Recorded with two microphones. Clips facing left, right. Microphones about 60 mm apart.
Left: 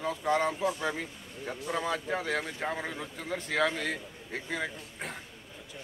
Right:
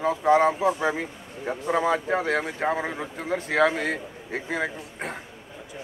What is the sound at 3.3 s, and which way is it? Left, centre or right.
Speech, centre.